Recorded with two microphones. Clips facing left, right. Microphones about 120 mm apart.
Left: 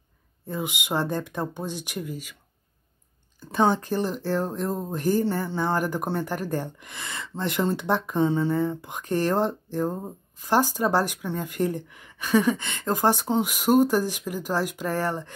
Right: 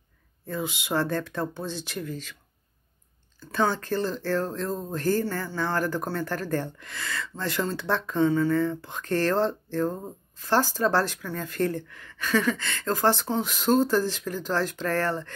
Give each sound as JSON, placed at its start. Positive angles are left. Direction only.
{"t": 0.5, "sound": "speech", "side_deg": 15}
{"t": 3.3, "sound": "speech", "side_deg": 20}